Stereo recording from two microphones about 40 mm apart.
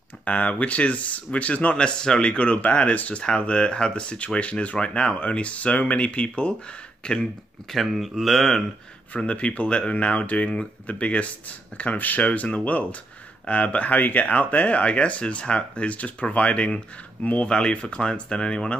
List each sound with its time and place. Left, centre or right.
0.2 s speech: left
1.8 s speech: left
2.3 s speech: left
7.7 s speech: centre
9.1 s speech: left
17.5 s speech: left